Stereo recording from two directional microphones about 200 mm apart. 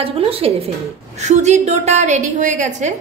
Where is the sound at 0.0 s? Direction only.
30° right (ahead or behind).